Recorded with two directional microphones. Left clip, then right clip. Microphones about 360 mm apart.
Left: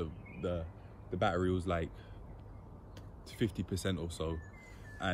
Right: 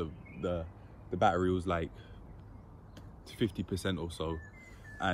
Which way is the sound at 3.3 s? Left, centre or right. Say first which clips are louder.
Right 2 dB; centre.